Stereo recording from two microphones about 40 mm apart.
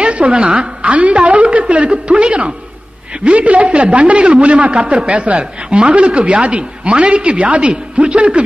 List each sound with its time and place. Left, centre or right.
0.0 s a woman's voice: right